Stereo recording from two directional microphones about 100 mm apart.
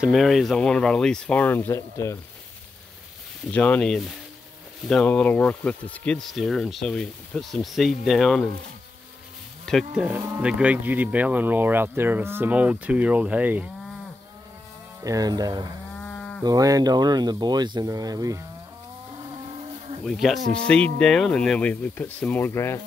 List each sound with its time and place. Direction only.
0.0 s speech: centre (ahead or behind); by 1.8 s 20° left (ahead or behind)
1.8 s speech: 30° left (ahead or behind)
3.5 s speech: 15° left (ahead or behind)
3.9 s speech: centre (ahead or behind)
5.0 s speech: 15° left (ahead or behind); by 8.5 s centre (ahead or behind)
9.9 s speech: 15° right (ahead or behind)
15.0 s speech: 40° right (ahead or behind)
16.0 s cattle: 15° left (ahead or behind)
16.4 s speech: 35° right (ahead or behind)
19.1 s insect: 50° right (ahead or behind); by 20.0 s 65° right (ahead or behind)
20.1 s speech: centre (ahead or behind)
20.6 s speech: 10° left (ahead or behind)
22.5 s speech: 25° left (ahead or behind)